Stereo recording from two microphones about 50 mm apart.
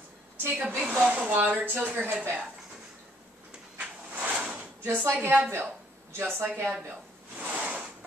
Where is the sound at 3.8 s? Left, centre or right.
Right.